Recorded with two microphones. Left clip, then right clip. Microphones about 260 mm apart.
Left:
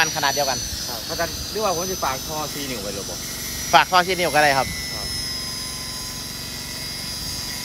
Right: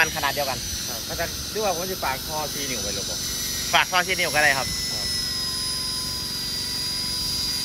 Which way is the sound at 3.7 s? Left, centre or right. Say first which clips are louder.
Left 5 dB; centre.